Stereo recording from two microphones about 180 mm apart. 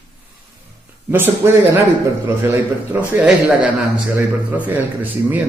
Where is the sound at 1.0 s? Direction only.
10° right (ahead or behind).